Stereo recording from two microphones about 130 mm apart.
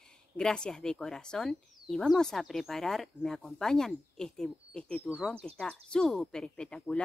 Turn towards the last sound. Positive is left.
turn(degrees=5)  # may be behind; listen again after turning